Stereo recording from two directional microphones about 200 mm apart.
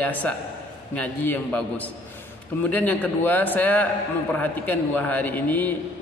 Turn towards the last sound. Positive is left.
turn(degrees=10)  # may be behind; listen again after turning